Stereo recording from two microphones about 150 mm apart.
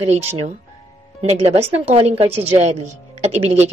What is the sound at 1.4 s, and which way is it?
Speech, 45° right (ahead or behind).